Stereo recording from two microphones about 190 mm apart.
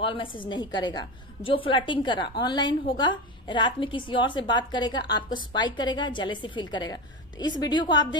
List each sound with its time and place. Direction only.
0.0 s a woman's voice: 25° left (ahead or behind)